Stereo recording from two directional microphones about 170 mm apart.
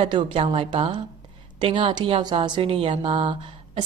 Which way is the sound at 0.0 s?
30° right (ahead or behind).